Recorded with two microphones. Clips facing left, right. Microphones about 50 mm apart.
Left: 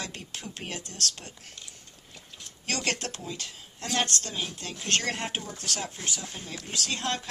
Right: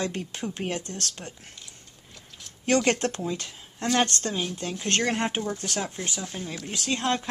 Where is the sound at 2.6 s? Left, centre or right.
Right.